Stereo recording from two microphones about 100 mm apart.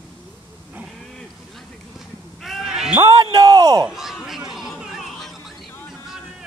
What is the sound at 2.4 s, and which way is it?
Sheep, centre (ahead or behind).